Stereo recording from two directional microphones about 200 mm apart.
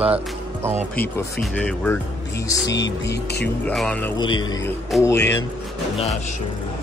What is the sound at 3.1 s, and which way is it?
Speech, 55° left (ahead or behind).